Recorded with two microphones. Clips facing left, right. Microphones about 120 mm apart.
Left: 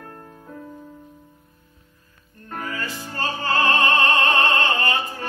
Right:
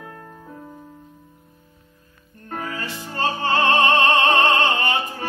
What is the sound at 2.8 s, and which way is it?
Music, 25° right (ahead or behind).